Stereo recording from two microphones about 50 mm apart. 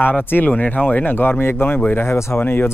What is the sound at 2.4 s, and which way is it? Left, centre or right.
Speech, left.